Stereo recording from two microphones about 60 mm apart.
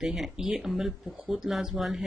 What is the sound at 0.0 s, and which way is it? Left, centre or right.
Speech, centre.